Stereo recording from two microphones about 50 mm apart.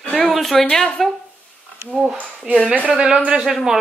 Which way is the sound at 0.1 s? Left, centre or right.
Centre.